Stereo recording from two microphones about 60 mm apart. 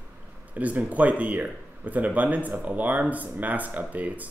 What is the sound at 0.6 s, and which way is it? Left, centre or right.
Speech, right.